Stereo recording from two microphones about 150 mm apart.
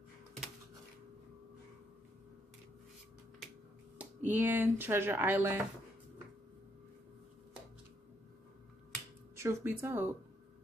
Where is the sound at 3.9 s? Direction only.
10° right (ahead or behind).